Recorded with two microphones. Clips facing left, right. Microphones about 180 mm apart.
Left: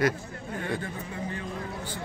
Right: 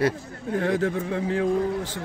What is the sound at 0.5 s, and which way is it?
Speech, 90° right.